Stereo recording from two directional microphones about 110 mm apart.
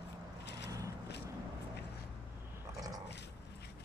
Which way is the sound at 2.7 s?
35° right (ahead or behind).